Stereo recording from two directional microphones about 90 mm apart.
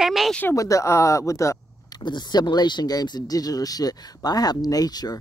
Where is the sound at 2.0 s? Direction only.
55° left (ahead or behind).